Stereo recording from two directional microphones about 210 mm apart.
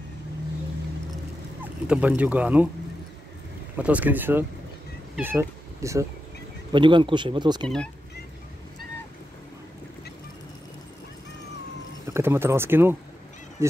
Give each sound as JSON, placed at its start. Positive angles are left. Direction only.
{"t": 1.6, "sound": "speech", "side_deg": -5}
{"t": 3.7, "sound": "speech", "side_deg": -5}
{"t": 7.6, "sound": "speech", "side_deg": 5}
{"t": 12.1, "sound": "speech", "side_deg": -10}